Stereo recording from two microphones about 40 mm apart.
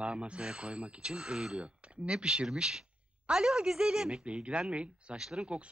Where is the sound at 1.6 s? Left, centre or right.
Right.